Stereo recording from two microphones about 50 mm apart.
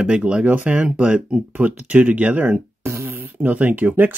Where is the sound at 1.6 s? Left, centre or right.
Right.